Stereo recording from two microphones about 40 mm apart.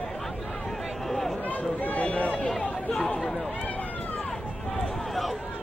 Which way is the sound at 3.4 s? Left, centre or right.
Left.